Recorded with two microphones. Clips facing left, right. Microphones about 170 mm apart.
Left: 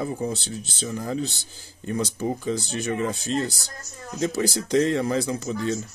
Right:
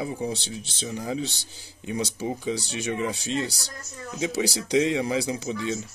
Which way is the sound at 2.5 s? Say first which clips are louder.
Left 2 dB; 45° left (ahead or behind).